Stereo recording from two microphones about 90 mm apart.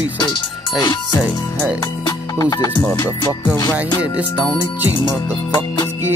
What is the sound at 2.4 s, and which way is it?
Music, 40° left (ahead or behind).